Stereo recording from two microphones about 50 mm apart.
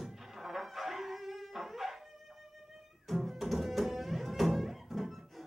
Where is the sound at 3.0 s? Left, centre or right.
Centre.